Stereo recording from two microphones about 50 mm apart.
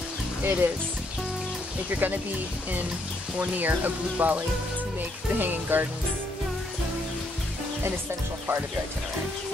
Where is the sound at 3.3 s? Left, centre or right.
Right.